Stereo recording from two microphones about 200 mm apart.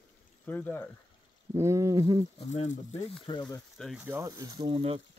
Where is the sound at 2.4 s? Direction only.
35° left (ahead or behind).